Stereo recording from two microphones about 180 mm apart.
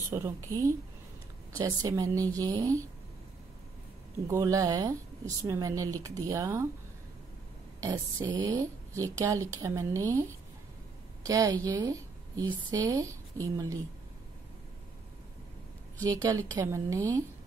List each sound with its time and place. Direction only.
0.1 s speech: 15° right (ahead or behind)
1.6 s a woman's voice: 20° right (ahead or behind)
4.3 s a woman's voice: 15° right (ahead or behind)
8.3 s speech: 25° right (ahead or behind)
11.2 s a woman's voice: 20° right (ahead or behind)
16.0 s speech: 20° right (ahead or behind)